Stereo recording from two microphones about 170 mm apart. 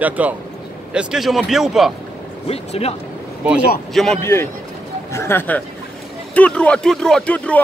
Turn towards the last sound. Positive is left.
turn(degrees=10)  # may be behind; listen again after turning